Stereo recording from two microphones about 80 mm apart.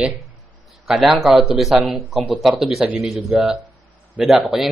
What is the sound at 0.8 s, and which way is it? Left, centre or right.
A man's voice, centre.